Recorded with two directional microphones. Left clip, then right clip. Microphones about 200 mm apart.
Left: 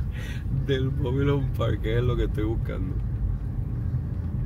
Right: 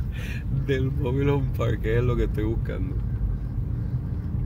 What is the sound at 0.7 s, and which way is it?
Speech, 25° right (ahead or behind).